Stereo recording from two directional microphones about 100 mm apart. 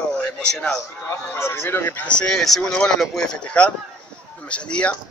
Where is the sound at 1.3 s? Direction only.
25° left (ahead or behind).